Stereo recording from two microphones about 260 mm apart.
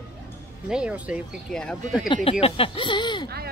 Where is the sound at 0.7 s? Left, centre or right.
Centre.